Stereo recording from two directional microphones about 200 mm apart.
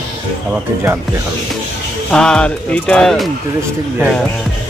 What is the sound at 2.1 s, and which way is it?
Speech, 5° left (ahead or behind).